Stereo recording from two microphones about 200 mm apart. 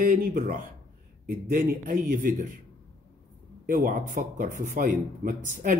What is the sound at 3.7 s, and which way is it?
Speech, 40° right (ahead or behind).